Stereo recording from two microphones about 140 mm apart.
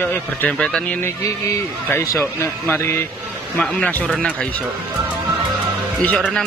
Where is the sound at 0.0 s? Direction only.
15° left (ahead or behind).